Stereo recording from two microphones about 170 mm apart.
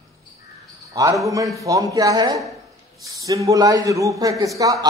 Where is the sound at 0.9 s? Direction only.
20° right (ahead or behind).